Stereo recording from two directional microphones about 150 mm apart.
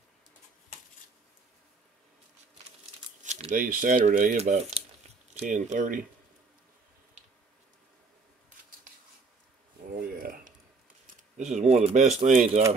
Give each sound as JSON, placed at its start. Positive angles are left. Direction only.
{"t": 3.2, "sound": "speech", "side_deg": -55}
{"t": 4.4, "sound": "speech", "side_deg": -50}
{"t": 9.8, "sound": "a sound", "side_deg": -70}
{"t": 11.1, "sound": "speech", "side_deg": -50}